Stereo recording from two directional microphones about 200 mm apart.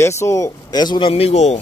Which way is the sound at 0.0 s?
15° left (ahead or behind).